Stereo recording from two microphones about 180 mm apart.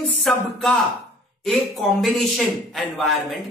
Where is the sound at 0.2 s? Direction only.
Centre (ahead or behind).